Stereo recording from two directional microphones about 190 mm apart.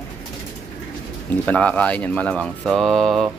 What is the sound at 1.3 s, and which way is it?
Speech, 5° left (ahead or behind).